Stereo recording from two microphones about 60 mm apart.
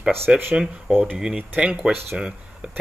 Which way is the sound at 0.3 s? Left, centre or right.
Right.